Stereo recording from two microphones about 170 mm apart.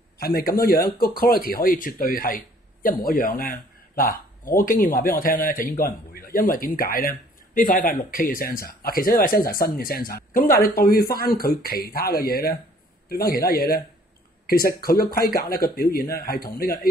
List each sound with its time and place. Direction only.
0.2 s speech: 60° left (ahead or behind)